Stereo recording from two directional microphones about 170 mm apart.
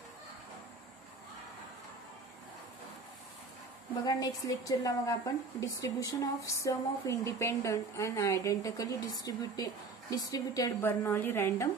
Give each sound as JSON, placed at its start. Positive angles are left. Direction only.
{"t": 4.0, "sound": "a woman's voice", "side_deg": 20}